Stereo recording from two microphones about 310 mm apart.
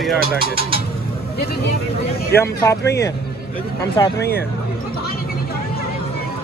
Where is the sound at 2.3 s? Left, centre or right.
Centre.